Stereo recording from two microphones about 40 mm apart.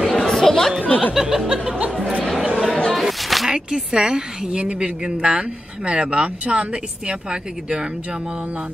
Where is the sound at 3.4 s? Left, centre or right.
Centre.